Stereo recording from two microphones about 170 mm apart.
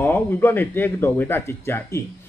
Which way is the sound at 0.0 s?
15° left (ahead or behind).